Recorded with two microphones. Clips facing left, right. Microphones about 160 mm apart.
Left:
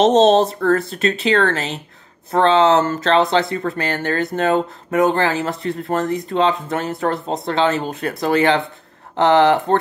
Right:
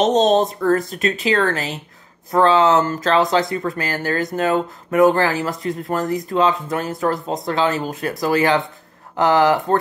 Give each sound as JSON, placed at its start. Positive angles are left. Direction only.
{"t": 0.2, "sound": "speech", "side_deg": 30}